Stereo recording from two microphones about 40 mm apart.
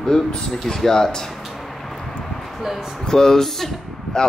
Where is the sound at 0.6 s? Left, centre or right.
Centre.